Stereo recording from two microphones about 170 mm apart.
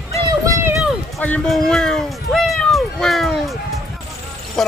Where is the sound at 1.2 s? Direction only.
5° left (ahead or behind).